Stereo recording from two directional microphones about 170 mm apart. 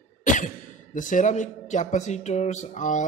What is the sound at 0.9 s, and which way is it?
A man's voice, 50° left (ahead or behind).